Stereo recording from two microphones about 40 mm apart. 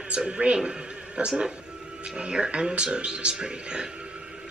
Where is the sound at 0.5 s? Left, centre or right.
Right.